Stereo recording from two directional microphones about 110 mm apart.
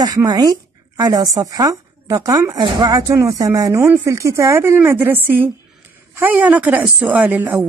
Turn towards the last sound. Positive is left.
turn(degrees=-15)  # may be behind; listen again after turning